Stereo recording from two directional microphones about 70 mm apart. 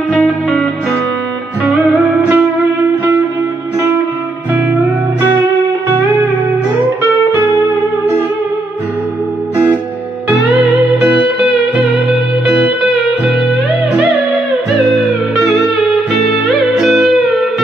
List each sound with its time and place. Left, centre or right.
0.1 s music: centre
2.2 s music: right
11.0 s music: centre
14.8 s music: centre